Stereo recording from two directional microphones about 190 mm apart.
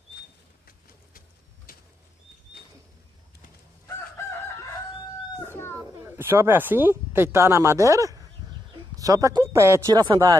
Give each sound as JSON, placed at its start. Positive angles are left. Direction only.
{"t": 5.4, "sound": "cat", "side_deg": 10}
{"t": 5.8, "sound": "speech", "side_deg": -15}